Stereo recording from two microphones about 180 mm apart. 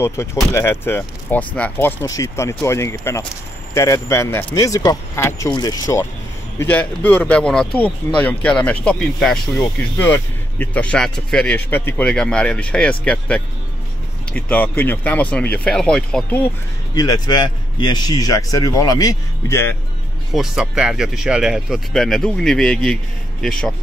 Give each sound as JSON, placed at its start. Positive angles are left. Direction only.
{"t": 0.0, "sound": "speech", "side_deg": 15}
{"t": 16.9, "sound": "speech", "side_deg": 20}
{"t": 20.3, "sound": "speech", "side_deg": -5}